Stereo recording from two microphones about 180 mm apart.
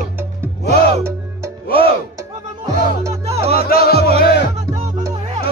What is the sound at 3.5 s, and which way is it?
Music, 55° left (ahead or behind).